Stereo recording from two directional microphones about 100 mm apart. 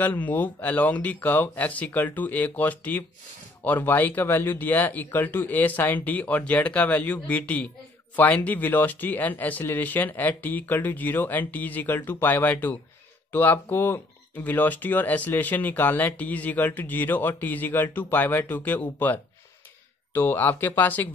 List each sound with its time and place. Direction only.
0.0 s speech: 15° left (ahead or behind)